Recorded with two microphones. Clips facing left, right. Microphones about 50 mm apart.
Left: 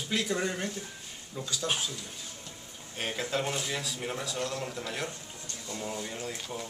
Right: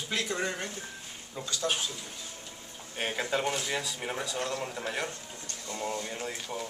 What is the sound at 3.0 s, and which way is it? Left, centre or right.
Speech, centre.